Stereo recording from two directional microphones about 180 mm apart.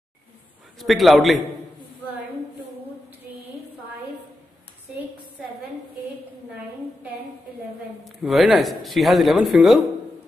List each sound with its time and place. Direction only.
0.7 s speech: centre (ahead or behind)
8.0 s speech: centre (ahead or behind)